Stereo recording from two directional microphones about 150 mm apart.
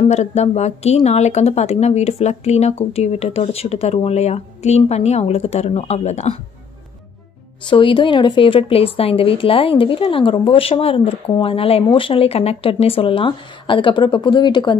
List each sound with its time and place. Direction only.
0.0 s speech: 50° left (ahead or behind)
7.6 s a woman's voice: 35° left (ahead or behind)